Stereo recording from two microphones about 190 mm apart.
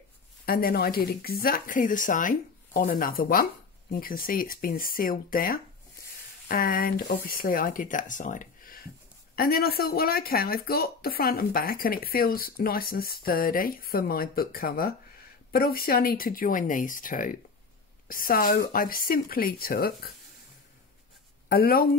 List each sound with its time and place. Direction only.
0.5 s speech: 50° left (ahead or behind)
21.5 s speech: 50° left (ahead or behind)